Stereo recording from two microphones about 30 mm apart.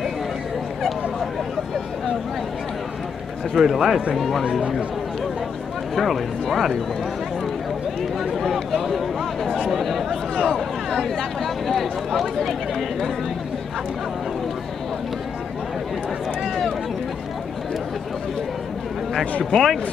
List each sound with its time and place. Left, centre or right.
3.5 s speech: centre
5.9 s speech: centre
9.7 s chatter: centre
10.3 s a sound: left
11.1 s a sound: centre
19.5 s speech: centre